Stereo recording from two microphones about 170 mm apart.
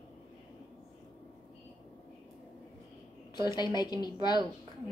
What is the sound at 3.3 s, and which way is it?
Speech, 25° left (ahead or behind).